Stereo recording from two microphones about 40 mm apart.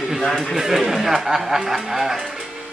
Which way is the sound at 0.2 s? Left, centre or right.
Centre.